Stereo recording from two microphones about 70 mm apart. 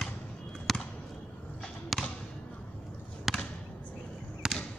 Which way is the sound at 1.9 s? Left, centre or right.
Centre.